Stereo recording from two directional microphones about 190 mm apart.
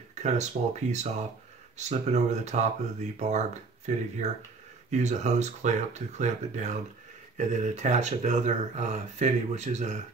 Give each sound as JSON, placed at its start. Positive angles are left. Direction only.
{"t": 0.1, "sound": "speech", "side_deg": -35}